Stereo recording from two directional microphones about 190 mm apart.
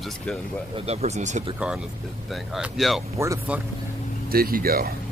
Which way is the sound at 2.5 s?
Centre (ahead or behind).